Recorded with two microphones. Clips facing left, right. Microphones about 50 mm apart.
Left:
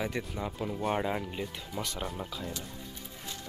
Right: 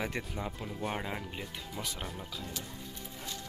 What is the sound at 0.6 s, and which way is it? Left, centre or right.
Speech, centre.